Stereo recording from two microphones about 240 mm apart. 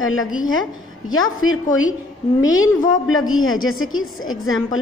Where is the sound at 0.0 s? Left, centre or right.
Left.